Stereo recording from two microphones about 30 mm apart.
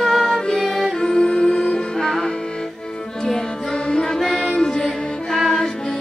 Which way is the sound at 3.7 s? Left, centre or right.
Left.